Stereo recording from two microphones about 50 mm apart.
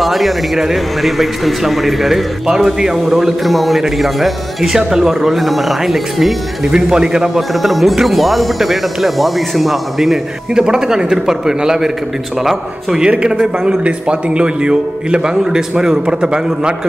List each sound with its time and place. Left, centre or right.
0.0 s a man's voice: centre
6.7 s a man's voice: centre
7.3 s a man's voice: centre
10.5 s a man's voice: centre